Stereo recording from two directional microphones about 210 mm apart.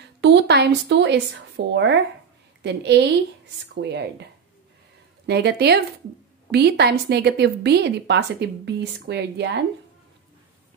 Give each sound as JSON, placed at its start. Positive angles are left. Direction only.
{"t": 0.2, "sound": "a woman's voice", "side_deg": -55}